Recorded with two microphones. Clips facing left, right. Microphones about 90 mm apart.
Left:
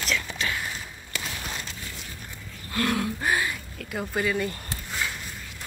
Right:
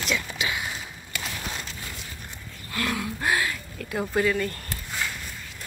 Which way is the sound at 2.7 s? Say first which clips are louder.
Left 3 dB; 40° left (ahead or behind).